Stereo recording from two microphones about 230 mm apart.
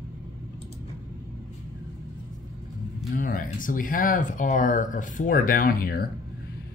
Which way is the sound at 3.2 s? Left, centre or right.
Left.